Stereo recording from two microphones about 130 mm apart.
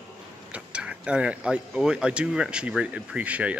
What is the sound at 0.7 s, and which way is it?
Speech, 10° right (ahead or behind).